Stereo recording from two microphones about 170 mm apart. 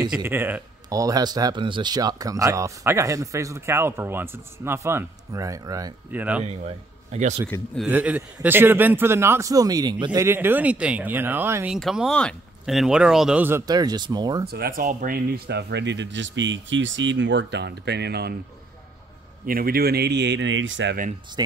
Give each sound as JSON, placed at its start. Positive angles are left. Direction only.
{"t": 0.1, "sound": "a man's voice", "side_deg": -15}
{"t": 6.1, "sound": "a man's voice", "side_deg": -10}
{"t": 6.4, "sound": "speech", "side_deg": -40}
{"t": 7.4, "sound": "a man's voice", "side_deg": 10}
{"t": 7.8, "sound": "a man's voice", "side_deg": -10}
{"t": 10.2, "sound": "a man's voice", "side_deg": -15}
{"t": 14.5, "sound": "speech", "side_deg": -60}
{"t": 19.4, "sound": "speech", "side_deg": -60}
{"t": 21.4, "sound": "speech", "side_deg": -25}